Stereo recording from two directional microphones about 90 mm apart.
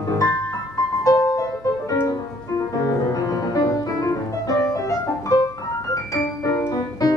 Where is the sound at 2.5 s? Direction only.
40° left (ahead or behind).